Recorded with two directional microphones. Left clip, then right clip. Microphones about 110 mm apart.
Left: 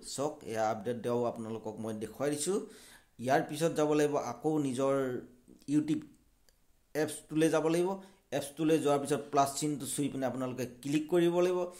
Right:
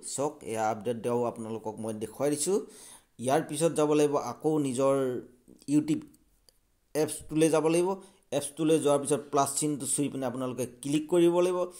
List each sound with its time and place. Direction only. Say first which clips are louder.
0.0 s speech: right 4 dB; 20° right (ahead or behind)
2.0 s speech: right 5 dB; 30° right (ahead or behind)